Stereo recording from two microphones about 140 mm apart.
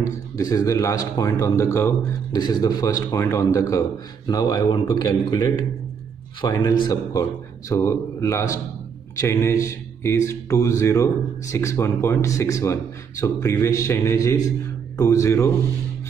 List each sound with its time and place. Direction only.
0.0 s a man's voice: 25° left (ahead or behind)
2.3 s a man's voice: 30° left (ahead or behind)